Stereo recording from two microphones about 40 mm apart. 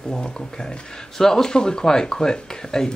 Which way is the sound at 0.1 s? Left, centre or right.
Centre.